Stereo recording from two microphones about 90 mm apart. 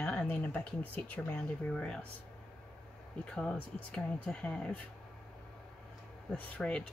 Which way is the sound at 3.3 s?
10° left (ahead or behind).